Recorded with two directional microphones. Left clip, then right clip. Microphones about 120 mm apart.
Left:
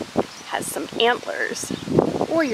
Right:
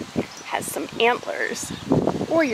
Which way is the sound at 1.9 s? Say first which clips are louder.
Left 3 dB; 55° right (ahead or behind).